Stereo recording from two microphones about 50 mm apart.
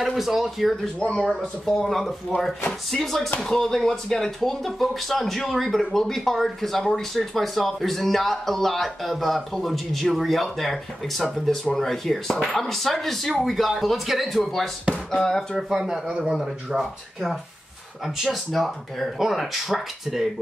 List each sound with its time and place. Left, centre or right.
0.0 s speech: centre
0.9 s speech: centre
15.5 s speech: centre
16.1 s speech: centre
16.3 s speech: centre